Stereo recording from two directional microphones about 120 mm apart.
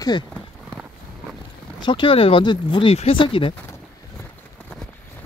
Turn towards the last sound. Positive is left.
turn(degrees=45)  # may be behind; listen again after turning